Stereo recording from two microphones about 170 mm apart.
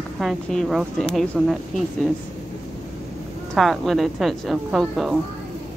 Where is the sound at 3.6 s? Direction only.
Centre (ahead or behind).